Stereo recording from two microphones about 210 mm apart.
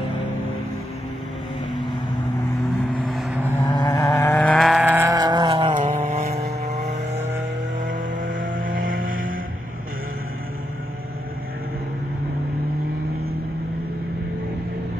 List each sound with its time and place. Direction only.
3.1 s vehicle: centre (ahead or behind)
3.6 s vehicle: 20° left (ahead or behind); by 9.4 s 40° right (ahead or behind)